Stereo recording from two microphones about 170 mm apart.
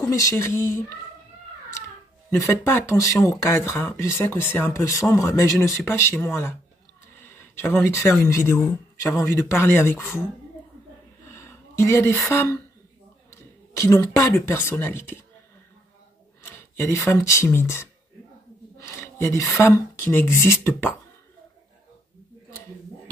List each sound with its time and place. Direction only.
0.0 s speech: 20° left (ahead or behind)
2.3 s speech: 15° left (ahead or behind)
11.2 s a sound: 15° left (ahead or behind)
12.3 s speech: 15° left (ahead or behind)
16.4 s speech: 15° left (ahead or behind)
18.8 s a sound: 15° left (ahead or behind)
19.6 s speech: 15° left (ahead or behind)